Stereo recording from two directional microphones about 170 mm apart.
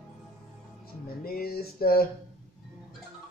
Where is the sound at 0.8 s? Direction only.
60° left (ahead or behind).